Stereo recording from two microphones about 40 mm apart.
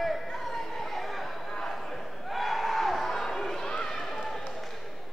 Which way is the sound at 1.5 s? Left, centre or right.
Centre.